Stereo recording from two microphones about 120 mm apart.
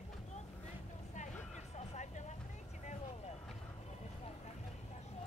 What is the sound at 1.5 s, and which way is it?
Vehicle, 80° left.